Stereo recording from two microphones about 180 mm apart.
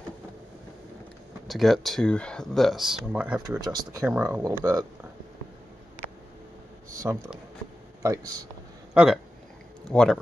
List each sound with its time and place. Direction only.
1.5 s speech: centre (ahead or behind)
3.6 s speech: 20° right (ahead or behind)
7.0 s speech: 10° right (ahead or behind)
8.9 s speech: centre (ahead or behind)